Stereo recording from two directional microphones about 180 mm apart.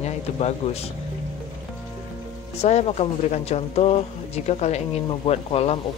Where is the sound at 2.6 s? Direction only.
40° left (ahead or behind).